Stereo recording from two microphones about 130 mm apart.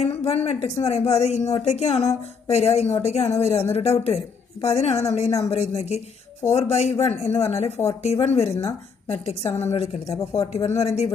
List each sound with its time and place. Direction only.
0.0 s speech: 50° left (ahead or behind)
9.5 s a woman's voice: 55° left (ahead or behind)